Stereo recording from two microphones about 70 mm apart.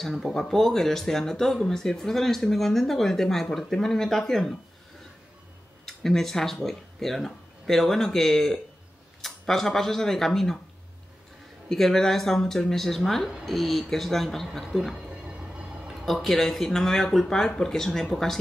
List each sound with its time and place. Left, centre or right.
0.0 s speech: centre
5.9 s speech: centre
11.7 s speech: centre
15.0 s train: centre
15.9 s speech: centre